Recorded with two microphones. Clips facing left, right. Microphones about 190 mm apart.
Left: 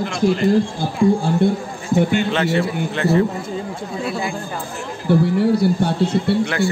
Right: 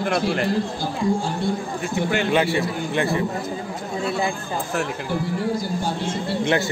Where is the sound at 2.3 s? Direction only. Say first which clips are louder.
Left 1 dB; 10° right (ahead or behind).